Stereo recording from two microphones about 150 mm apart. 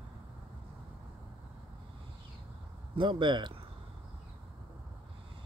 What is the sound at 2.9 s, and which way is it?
Speech, 35° right (ahead or behind).